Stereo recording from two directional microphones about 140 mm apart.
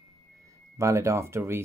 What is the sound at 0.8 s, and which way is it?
Speech, 20° right (ahead or behind).